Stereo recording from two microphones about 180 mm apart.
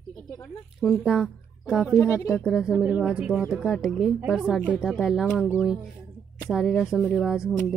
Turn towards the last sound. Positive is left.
turn(degrees=5)  # may be behind; listen again after turning